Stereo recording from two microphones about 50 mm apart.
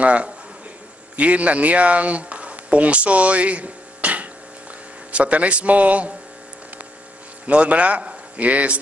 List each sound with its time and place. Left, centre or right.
0.0 s a man's voice: right
7.4 s a man's voice: right